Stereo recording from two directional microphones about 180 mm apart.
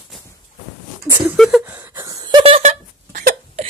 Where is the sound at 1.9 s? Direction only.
25° right (ahead or behind); by 3.6 s 45° right (ahead or behind).